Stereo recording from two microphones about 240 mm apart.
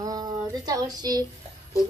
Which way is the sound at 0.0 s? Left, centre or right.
Centre.